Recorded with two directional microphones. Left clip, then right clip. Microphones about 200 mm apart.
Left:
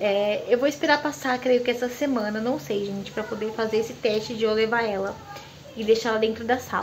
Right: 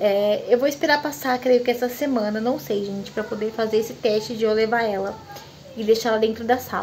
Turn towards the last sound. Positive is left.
turn(degrees=-15)  # may be behind; listen again after turning